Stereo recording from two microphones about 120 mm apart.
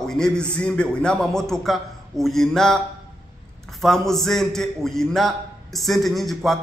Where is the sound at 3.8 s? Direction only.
Centre (ahead or behind).